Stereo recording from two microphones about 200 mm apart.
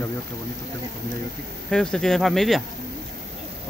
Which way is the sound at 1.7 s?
5° left (ahead or behind).